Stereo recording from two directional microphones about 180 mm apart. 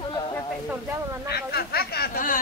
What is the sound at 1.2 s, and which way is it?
Speech, 60° left (ahead or behind).